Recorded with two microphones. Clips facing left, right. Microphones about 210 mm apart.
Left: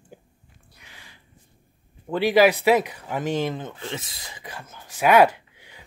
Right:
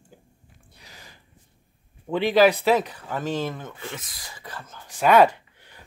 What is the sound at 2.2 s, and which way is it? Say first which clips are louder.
Speech: left 1 dB; 10° left (ahead or behind).